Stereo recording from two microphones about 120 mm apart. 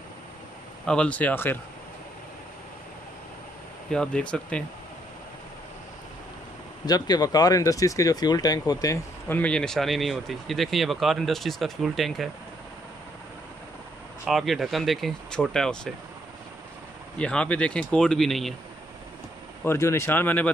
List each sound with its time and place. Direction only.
0.8 s speech: 10° left (ahead or behind)
3.9 s speech: 5° left (ahead or behind)
6.9 s speech: 35° left (ahead or behind)
9.3 s speech: 10° left (ahead or behind)
14.2 s speech: centre (ahead or behind)
17.2 s speech: 10° left (ahead or behind)
19.6 s speech: 20° left (ahead or behind)